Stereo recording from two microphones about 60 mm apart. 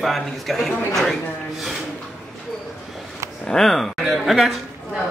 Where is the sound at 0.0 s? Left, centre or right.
Centre.